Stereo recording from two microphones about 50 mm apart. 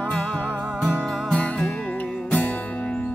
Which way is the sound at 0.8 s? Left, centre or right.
Left.